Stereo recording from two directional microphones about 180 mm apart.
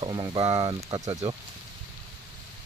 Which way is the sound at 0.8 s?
20° right (ahead or behind).